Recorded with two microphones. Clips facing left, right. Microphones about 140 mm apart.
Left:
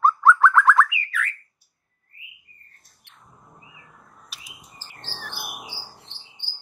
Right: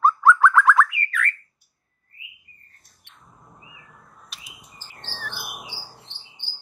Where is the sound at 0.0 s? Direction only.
Centre (ahead or behind).